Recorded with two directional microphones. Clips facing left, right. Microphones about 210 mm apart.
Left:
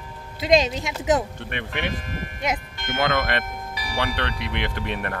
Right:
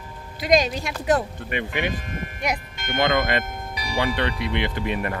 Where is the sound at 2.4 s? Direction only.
20° left (ahead or behind).